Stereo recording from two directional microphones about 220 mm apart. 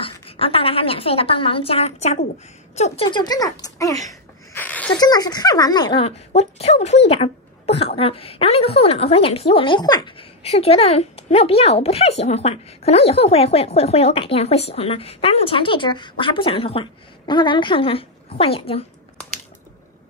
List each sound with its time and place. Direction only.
0.0 s speech: 25° left (ahead or behind)
4.6 s a sound: 5° left (ahead or behind)
4.9 s speech: 20° left (ahead or behind)